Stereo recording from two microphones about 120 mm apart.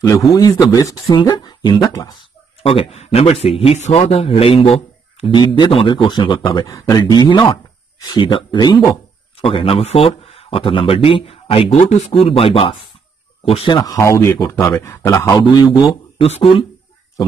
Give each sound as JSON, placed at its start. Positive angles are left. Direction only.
{"t": 0.0, "sound": "a man's voice", "side_deg": 30}
{"t": 2.6, "sound": "speech", "side_deg": 55}
{"t": 6.7, "sound": "speech", "side_deg": 30}
{"t": 9.4, "sound": "speech", "side_deg": 50}
{"t": 13.7, "sound": "a man's voice", "side_deg": 30}
{"t": 16.2, "sound": "speech", "side_deg": 55}